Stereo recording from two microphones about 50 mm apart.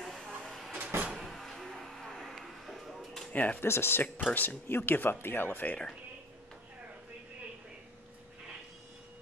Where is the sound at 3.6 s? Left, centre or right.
Left.